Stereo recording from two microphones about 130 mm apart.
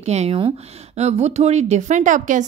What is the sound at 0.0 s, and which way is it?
Speech, 60° right (ahead or behind).